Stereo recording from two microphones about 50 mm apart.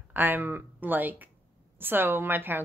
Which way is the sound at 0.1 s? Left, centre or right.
Right.